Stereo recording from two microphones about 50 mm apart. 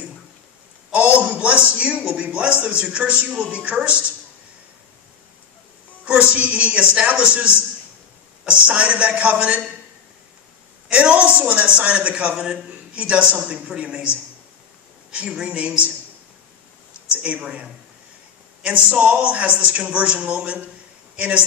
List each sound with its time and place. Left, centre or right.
0.9 s a sound: right
2.0 s a man's voice: right
6.0 s a man's voice: right
10.9 s a man's voice: right
17.1 s a man's voice: right